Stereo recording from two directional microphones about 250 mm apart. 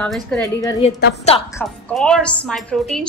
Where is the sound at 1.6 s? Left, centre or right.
Centre.